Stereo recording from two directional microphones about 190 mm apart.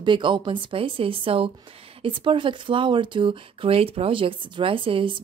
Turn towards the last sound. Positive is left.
turn(degrees=-30)  # may be behind; listen again after turning